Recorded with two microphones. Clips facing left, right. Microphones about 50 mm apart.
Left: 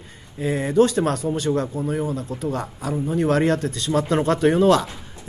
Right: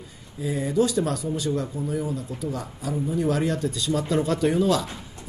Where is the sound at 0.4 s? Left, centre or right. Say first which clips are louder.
Left 5 dB; left.